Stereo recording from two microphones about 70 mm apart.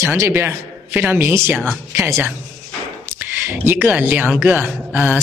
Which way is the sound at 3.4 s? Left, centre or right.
Right.